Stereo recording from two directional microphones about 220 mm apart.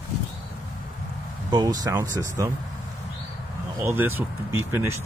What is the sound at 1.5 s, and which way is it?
Speech, 15° right (ahead or behind).